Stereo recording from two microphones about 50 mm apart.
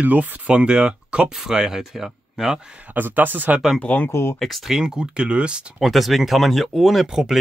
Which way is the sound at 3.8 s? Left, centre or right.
Left.